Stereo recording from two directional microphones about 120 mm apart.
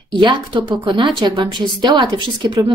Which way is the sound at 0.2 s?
45° right (ahead or behind).